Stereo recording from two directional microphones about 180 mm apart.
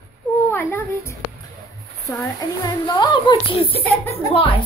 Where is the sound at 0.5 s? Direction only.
15° left (ahead or behind).